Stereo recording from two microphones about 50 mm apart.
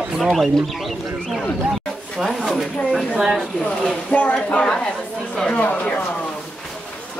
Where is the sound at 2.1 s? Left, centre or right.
Centre.